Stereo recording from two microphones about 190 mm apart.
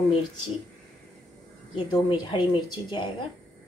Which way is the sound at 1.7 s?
25° left (ahead or behind).